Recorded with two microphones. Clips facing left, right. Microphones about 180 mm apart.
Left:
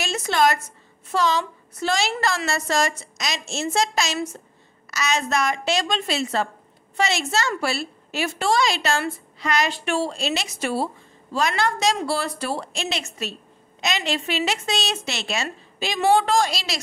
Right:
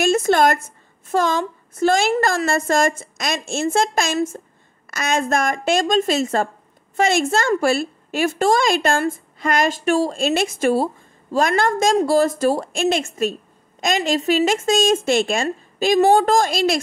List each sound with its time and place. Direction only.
0.0 s a woman's voice: 50° right (ahead or behind)